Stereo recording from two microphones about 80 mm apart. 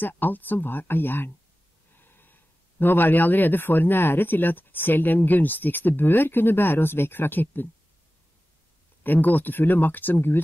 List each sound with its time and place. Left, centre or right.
0.0 s speech: left
9.0 s speech: left